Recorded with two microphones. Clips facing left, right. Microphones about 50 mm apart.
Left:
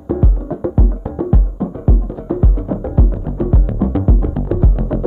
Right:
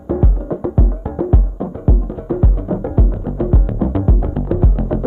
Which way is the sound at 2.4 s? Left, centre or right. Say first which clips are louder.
Even; centre.